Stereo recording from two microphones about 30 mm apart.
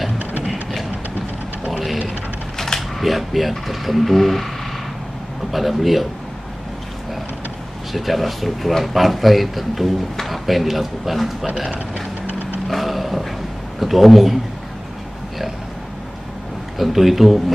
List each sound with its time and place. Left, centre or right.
1.7 s a sound: centre
2.5 s mechanisms: centre
3.0 s a man's voice: centre
5.5 s a man's voice: centre
7.9 s a man's voice: centre
12.3 s vehicle: right
12.6 s a sound: centre
13.7 s a man's voice: centre
16.7 s a man's voice: centre